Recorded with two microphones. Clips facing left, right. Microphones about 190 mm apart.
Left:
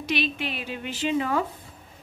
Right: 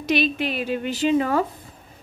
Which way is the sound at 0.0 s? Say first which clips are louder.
Right 6 dB; 45° right (ahead or behind).